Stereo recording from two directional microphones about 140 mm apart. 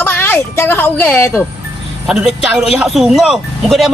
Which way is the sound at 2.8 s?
Centre (ahead or behind).